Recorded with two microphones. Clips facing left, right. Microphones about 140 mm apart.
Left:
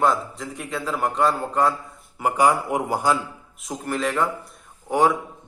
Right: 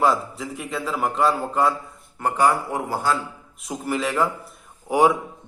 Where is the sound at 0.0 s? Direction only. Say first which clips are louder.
Right 1 dB; centre (ahead or behind).